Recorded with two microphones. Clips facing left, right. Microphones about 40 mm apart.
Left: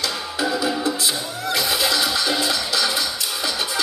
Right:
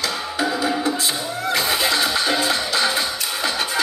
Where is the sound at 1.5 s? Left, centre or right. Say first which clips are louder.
Right 1 dB; right.